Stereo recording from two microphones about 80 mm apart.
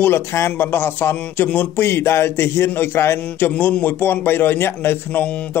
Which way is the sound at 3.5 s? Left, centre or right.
Centre.